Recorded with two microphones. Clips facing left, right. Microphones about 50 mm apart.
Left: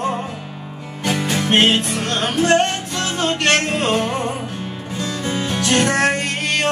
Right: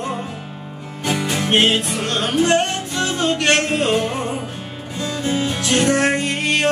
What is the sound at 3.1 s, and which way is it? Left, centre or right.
Music, left.